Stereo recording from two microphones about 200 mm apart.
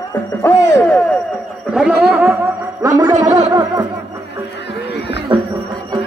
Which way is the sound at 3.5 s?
15° right (ahead or behind).